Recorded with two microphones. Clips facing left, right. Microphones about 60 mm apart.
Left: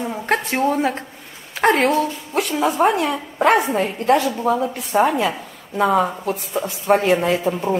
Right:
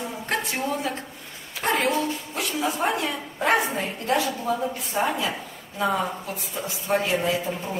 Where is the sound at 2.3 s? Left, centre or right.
Left.